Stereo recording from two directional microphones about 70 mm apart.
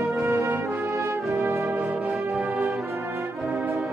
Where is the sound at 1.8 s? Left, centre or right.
Right.